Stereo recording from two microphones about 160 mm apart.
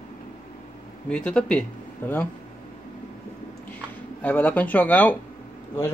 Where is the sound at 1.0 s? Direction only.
5° left (ahead or behind).